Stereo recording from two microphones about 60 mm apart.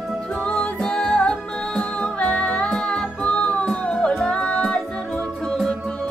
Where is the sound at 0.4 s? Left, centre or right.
Left.